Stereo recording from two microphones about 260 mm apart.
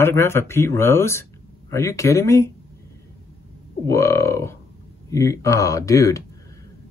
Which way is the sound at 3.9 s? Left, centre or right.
Centre.